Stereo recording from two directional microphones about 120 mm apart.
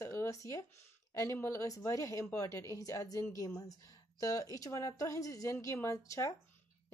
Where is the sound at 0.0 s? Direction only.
25° left (ahead or behind).